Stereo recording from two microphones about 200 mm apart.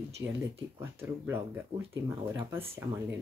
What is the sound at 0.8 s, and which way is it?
Speech, 10° right (ahead or behind).